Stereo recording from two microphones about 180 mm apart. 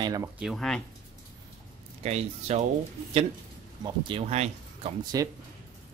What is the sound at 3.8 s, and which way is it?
Speech, 30° right (ahead or behind).